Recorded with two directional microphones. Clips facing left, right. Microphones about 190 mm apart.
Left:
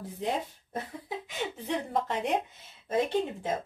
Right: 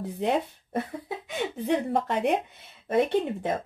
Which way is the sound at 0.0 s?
65° right (ahead or behind).